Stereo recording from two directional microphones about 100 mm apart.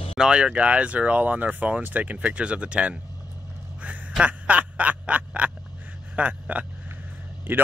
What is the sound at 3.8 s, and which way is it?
Quack, 15° right (ahead or behind).